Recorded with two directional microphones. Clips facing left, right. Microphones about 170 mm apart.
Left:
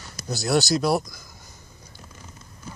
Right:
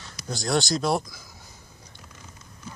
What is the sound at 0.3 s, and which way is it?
Speech, 5° left (ahead or behind).